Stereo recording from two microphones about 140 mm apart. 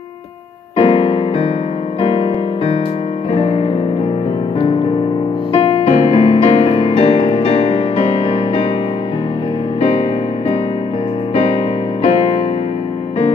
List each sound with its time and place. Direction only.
0.7 s music: 45° left (ahead or behind)
5.5 s music: 45° left (ahead or behind)
11.3 s music: 45° left (ahead or behind)